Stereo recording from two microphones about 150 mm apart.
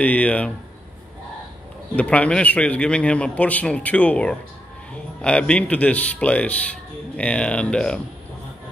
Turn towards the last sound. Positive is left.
turn(degrees=5)  # may be behind; listen again after turning